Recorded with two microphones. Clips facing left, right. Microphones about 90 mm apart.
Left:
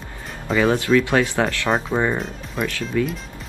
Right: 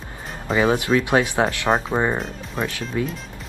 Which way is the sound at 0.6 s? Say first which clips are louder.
Left 2 dB; 20° right (ahead or behind).